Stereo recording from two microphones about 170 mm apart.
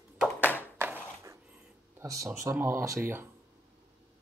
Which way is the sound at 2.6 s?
15° right (ahead or behind).